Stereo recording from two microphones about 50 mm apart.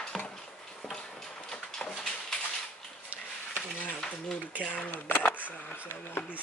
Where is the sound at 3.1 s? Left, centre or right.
Right.